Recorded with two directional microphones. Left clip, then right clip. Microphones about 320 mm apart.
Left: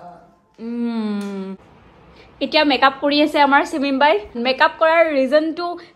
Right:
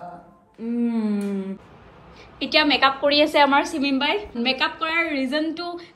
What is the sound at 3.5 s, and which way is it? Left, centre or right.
A woman's voice, left.